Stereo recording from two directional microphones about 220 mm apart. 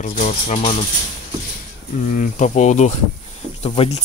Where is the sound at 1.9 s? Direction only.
35° left (ahead or behind).